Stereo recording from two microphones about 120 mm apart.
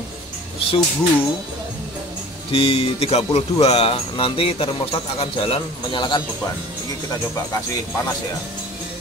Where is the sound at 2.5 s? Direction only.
50° left (ahead or behind).